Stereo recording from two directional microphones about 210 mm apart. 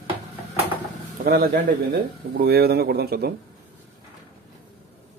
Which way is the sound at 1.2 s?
45° right (ahead or behind).